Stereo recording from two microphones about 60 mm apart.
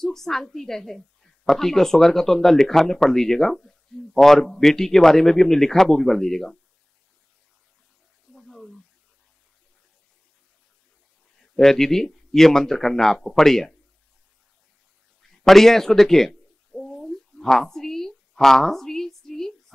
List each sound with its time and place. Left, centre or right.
0.0 s a woman's voice: centre
8.4 s a sound: centre
11.5 s a woman's voice: centre
15.4 s bird: centre